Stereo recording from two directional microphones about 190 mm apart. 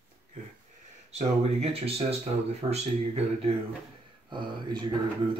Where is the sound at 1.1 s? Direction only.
30° right (ahead or behind).